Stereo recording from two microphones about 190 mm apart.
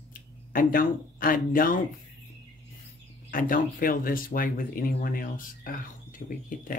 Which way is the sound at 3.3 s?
45° left (ahead or behind).